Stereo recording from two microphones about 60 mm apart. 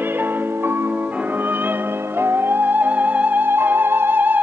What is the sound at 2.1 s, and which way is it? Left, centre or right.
Music, right.